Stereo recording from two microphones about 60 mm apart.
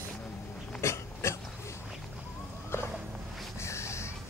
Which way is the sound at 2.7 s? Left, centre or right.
Left.